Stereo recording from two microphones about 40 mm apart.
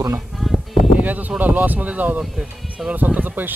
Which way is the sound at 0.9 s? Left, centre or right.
Right.